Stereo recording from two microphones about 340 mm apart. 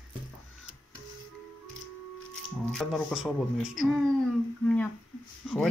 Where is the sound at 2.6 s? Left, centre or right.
Centre.